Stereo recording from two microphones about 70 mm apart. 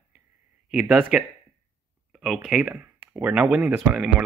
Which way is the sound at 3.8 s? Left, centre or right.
Centre.